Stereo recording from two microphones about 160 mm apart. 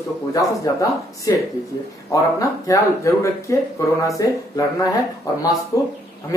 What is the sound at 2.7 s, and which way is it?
Speech, 20° left (ahead or behind).